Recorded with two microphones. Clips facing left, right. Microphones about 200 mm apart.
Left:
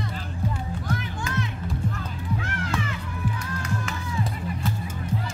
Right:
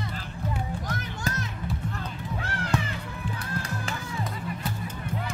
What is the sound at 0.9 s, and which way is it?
Music, 40° right (ahead or behind).